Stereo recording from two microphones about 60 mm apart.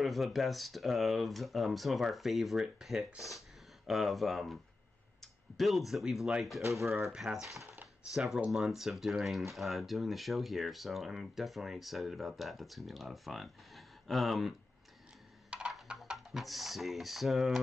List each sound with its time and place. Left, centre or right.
0.0 s speech: centre
7.3 s speech: right
8.1 s speech: centre
16.1 s speech: centre